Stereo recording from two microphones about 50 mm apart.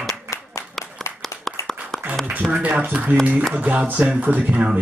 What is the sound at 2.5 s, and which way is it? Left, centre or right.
Speech, right.